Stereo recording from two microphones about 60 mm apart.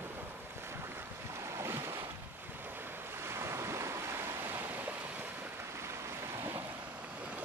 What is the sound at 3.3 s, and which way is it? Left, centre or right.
Waves, right.